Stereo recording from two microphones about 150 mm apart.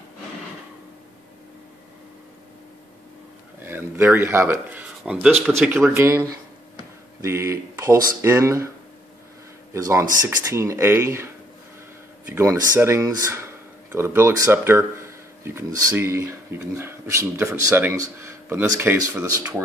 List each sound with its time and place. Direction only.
3.6 s speech: 15° right (ahead or behind)
5.9 s speech: 20° right (ahead or behind)
9.8 s speech: 20° right (ahead or behind)
12.3 s speech: 20° right (ahead or behind)